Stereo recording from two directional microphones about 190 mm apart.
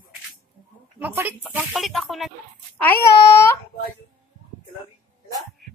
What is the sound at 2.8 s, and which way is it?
Speech, 10° left (ahead or behind).